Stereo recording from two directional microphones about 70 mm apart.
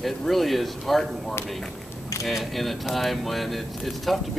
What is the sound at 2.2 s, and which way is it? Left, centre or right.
Speech, centre.